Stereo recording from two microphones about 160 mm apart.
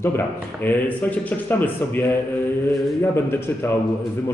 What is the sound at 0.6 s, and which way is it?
Speech, 10° left (ahead or behind).